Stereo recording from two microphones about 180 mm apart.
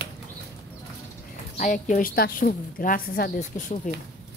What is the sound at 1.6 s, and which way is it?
A woman's voice, 45° left (ahead or behind).